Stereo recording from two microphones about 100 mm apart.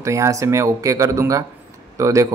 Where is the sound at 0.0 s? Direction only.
30° right (ahead or behind).